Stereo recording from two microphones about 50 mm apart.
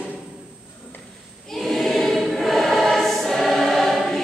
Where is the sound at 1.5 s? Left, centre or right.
Centre.